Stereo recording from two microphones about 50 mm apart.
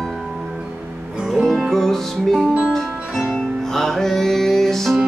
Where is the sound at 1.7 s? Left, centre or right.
Centre.